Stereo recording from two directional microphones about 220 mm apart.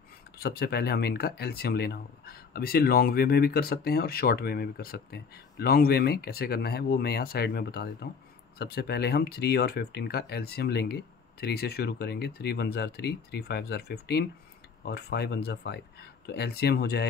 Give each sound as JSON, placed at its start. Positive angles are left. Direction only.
{"t": 0.4, "sound": "speech", "side_deg": 45}